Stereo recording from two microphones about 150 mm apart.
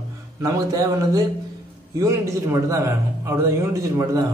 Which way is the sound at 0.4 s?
25° right (ahead or behind).